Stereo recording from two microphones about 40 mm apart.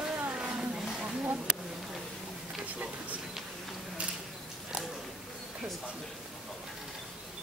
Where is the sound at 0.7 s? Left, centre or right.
Centre.